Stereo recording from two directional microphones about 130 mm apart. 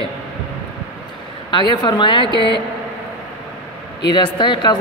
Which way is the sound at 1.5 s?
35° left (ahead or behind).